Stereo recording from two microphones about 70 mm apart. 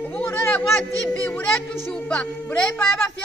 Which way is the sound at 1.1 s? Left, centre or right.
Centre.